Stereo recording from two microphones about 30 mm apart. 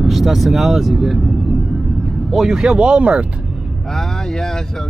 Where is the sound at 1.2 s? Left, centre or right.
Centre.